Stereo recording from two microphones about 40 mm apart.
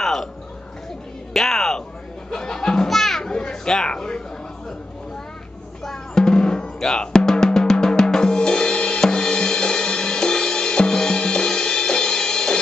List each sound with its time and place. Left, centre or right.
0.0 s a sound: centre
1.3 s a sound: centre
2.3 s music: centre
2.9 s children playing: centre
3.7 s a man's voice: centre
5.9 s drum: centre
9.0 s music: centre